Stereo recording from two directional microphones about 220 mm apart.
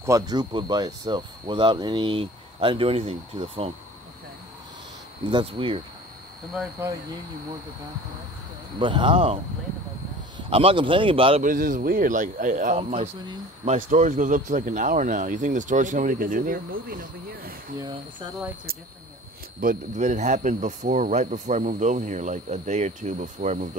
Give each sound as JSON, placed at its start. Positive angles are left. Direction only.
{"t": 0.0, "sound": "speech", "side_deg": -15}
{"t": 5.3, "sound": "speech", "side_deg": -25}
{"t": 8.7, "sound": "speech", "side_deg": -20}
{"t": 10.5, "sound": "speech", "side_deg": -25}
{"t": 11.4, "sound": "speech", "side_deg": -35}
{"t": 17.7, "sound": "speech", "side_deg": -20}
{"t": 19.6, "sound": "speech", "side_deg": -35}